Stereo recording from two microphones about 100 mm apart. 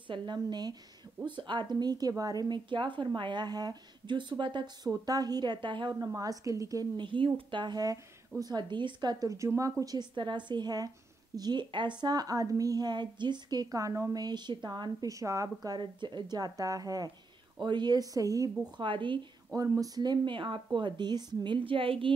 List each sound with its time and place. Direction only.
0.1 s a woman's voice: 50° right (ahead or behind)
4.9 s a woman's voice: 40° right (ahead or behind)
5.9 s a woman's voice: 35° right (ahead or behind)
7.0 s a woman's voice: 55° right (ahead or behind); by 18.5 s 35° right (ahead or behind)
18.8 s speech: 55° right (ahead or behind)
19.8 s a woman's voice: 40° right (ahead or behind)
21.5 s speech: 60° right (ahead or behind)